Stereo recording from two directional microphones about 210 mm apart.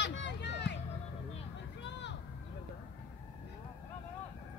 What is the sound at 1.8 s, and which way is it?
Vehicle, 55° left (ahead or behind).